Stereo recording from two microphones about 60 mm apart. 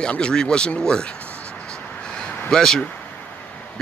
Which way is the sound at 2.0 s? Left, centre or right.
Centre.